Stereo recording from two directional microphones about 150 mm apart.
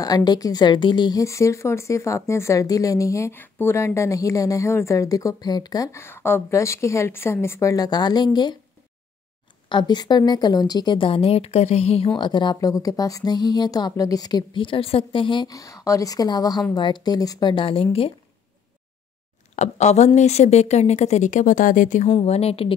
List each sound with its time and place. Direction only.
0.0 s a woman's voice: 25° left (ahead or behind)
9.7 s a woman's voice: 30° left (ahead or behind)
12.2 s a woman's voice: 30° left (ahead or behind)
19.5 s speech: 50° left (ahead or behind)
22.1 s a woman's voice: 45° left (ahead or behind)